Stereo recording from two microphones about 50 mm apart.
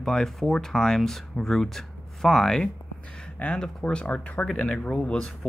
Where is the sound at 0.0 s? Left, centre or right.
Centre.